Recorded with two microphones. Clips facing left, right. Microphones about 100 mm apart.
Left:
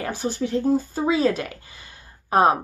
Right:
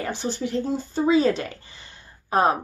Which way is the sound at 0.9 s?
5° left (ahead or behind).